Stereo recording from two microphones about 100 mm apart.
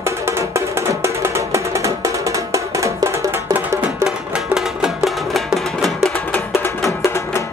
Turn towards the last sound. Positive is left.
turn(degrees=25)  # may be behind; listen again after turning